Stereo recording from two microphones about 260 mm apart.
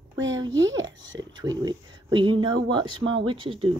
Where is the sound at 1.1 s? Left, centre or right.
Centre.